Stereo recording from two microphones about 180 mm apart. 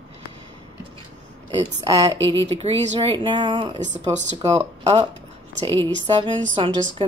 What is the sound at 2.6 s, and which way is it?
Speech, 30° right (ahead or behind).